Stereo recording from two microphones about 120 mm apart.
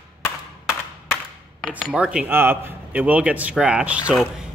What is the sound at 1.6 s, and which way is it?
A man's voice, 5° right (ahead or behind).